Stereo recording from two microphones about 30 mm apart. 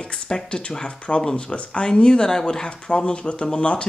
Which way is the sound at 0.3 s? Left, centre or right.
Left.